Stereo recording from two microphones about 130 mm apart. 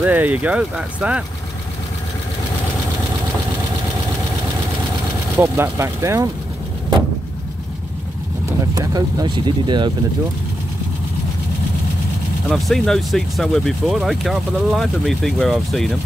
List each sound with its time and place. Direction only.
0.0 s speech: 15° right (ahead or behind)
5.4 s speech: 20° right (ahead or behind)
8.5 s speech: 25° right (ahead or behind)
12.4 s speech: centre (ahead or behind)